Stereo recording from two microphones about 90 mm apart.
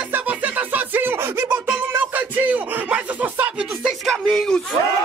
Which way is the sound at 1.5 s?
20° right (ahead or behind).